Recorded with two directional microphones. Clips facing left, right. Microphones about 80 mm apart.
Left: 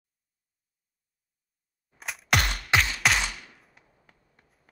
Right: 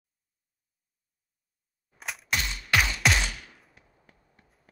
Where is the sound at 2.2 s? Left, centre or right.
Left.